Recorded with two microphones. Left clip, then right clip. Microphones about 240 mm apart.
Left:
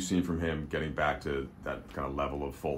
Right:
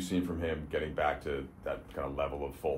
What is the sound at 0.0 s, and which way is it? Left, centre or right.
Speech, left.